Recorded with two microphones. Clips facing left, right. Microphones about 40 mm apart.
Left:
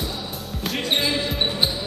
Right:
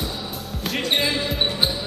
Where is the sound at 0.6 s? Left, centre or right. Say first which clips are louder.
Right 1 dB; centre.